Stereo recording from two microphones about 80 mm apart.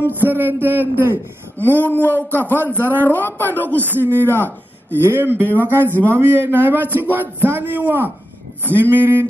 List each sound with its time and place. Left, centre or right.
0.2 s a man's voice: right
1.8 s speech: left
3.7 s a man's voice: right
4.2 s speech: left
5.0 s a man's voice: right